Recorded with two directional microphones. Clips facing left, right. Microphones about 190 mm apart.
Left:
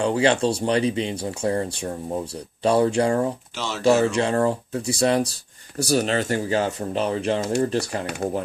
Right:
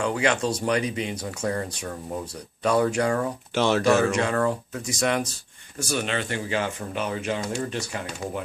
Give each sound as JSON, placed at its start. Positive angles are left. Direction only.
{"t": 0.0, "sound": "speech", "side_deg": 30}
{"t": 3.5, "sound": "speech", "side_deg": -60}
{"t": 3.8, "sound": "speech", "side_deg": 30}